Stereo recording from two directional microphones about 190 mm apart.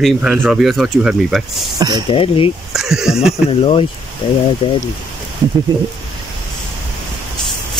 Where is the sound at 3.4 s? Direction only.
30° left (ahead or behind).